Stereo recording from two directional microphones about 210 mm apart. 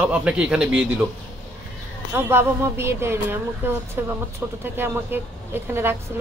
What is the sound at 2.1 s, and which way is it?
Speech, 10° right (ahead or behind).